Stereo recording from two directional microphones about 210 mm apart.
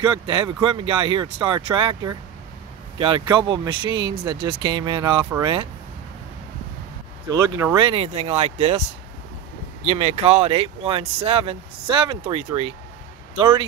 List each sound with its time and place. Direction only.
0.0 s speech: 25° right (ahead or behind)
7.2 s speech: 15° right (ahead or behind)
7.7 s speech: 25° right (ahead or behind)